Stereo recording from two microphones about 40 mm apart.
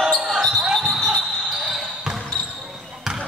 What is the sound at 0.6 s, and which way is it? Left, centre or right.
Basketball bounce, centre.